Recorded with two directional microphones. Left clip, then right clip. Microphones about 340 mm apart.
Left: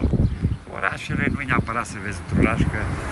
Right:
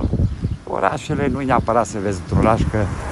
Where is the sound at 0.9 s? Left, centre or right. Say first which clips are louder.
Right 4 dB; centre.